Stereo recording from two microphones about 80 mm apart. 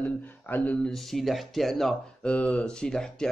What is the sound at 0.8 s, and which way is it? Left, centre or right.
Speech, centre.